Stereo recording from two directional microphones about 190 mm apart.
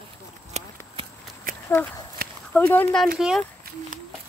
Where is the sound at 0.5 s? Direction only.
30° right (ahead or behind).